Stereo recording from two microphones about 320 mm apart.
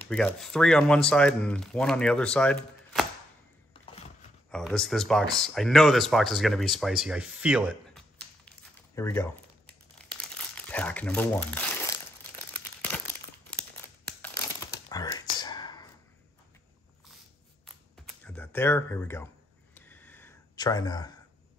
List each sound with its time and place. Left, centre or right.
0.1 s speech: centre
4.5 s a sound: centre
12.5 s crumpling: centre
14.2 s crumpling: centre
18.0 s computer keyboard: centre
19.7 s a sound: centre